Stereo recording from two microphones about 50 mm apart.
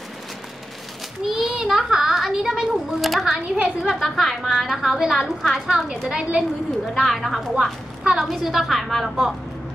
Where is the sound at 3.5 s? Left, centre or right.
Centre.